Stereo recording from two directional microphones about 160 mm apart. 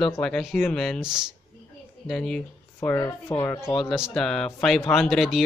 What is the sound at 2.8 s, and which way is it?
Speech, 15° left (ahead or behind).